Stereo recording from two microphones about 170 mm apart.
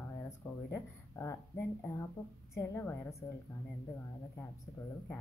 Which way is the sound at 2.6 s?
15° left (ahead or behind).